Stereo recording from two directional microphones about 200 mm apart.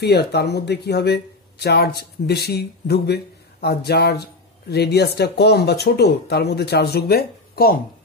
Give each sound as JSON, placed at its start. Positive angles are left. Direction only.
{"t": 0.0, "sound": "speech", "side_deg": 55}